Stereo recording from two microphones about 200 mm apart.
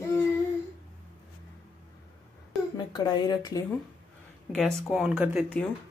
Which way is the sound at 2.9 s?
20° left (ahead or behind).